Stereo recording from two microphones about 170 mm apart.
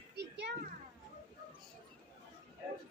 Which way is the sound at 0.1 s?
80° right.